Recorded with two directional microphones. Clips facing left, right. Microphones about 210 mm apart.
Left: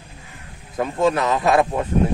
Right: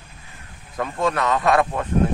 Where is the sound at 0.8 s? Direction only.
20° left (ahead or behind).